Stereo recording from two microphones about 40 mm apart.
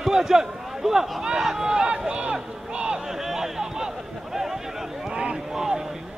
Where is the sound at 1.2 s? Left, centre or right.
Centre.